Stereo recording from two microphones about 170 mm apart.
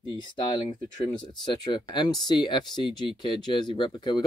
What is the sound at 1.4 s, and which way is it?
Speech, 25° left (ahead or behind).